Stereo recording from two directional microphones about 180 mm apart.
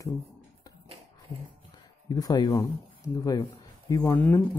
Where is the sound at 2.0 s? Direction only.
20° left (ahead or behind).